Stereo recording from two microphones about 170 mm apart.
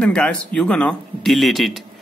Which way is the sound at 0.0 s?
5° left (ahead or behind).